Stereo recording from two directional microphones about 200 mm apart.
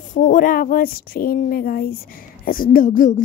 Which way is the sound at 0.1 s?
40° left (ahead or behind).